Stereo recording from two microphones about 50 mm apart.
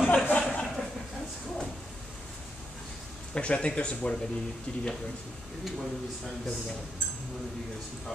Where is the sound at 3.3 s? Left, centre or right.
Left.